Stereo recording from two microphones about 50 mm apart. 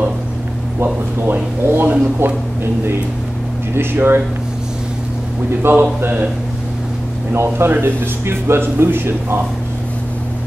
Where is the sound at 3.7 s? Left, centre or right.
Right.